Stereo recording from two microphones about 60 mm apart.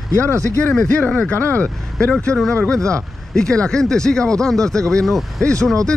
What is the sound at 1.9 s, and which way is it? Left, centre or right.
Speech, centre.